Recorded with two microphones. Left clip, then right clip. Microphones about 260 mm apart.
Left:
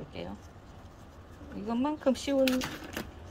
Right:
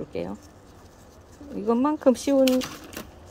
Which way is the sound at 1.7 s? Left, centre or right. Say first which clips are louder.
Right 9 dB; centre.